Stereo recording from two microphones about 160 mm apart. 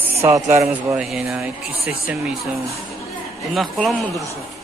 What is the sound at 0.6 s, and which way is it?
Speech, 5° right (ahead or behind).